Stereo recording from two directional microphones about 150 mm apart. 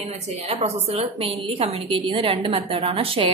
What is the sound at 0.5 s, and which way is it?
A woman's voice, 40° right (ahead or behind).